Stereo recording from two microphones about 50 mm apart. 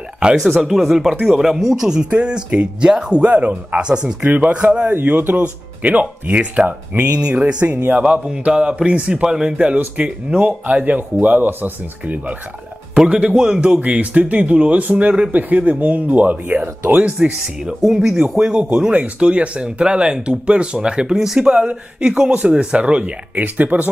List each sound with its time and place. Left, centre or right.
0.4 s speech: centre
4.2 s speech: right
4.9 s speech: right
7.6 s speech: right
8.0 s speech: centre
11.0 s speech: right
13.4 s speech: centre
13.8 s speech: right
17.8 s speech: centre; by 23.9 s right